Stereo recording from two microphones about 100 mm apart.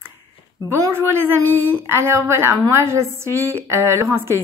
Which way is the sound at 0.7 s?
25° right (ahead or behind).